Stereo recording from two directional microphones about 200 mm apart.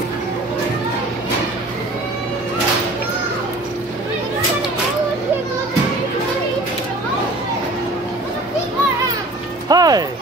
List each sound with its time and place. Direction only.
9.7 s music: 20° right (ahead or behind)